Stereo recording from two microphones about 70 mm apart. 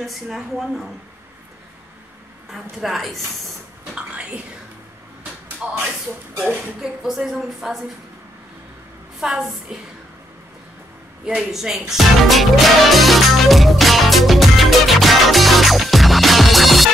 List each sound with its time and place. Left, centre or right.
0.0 s a woman's voice: centre
2.8 s a woman's voice: centre
3.9 s bathtub: centre
5.6 s speech: centre
6.8 s a woman's voice: centre
9.2 s a woman's voice: centre
11.2 s music: centre